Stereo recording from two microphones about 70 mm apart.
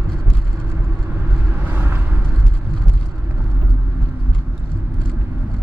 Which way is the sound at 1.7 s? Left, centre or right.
Right.